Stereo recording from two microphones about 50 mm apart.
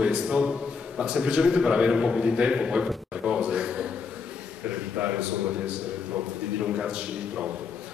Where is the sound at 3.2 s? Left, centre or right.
Centre.